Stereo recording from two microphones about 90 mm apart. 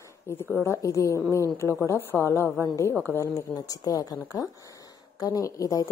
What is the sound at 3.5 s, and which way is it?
Speech, 45° left (ahead or behind).